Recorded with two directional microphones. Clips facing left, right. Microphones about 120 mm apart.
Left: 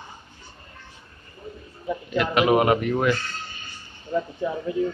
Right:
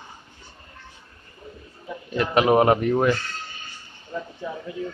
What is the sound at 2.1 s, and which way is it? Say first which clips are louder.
Speech: right 1 dB; 30° right (ahead or behind).